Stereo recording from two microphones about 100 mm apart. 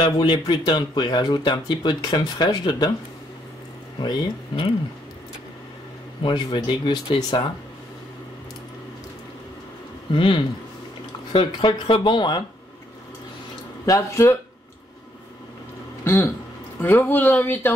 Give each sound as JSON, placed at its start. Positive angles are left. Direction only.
{"t": 0.0, "sound": "speech", "side_deg": 50}
{"t": 4.0, "sound": "speech", "side_deg": 50}
{"t": 6.2, "sound": "speech", "side_deg": 50}
{"t": 10.1, "sound": "speech", "side_deg": 60}
{"t": 13.8, "sound": "speech", "side_deg": 30}
{"t": 16.0, "sound": "speech", "side_deg": 25}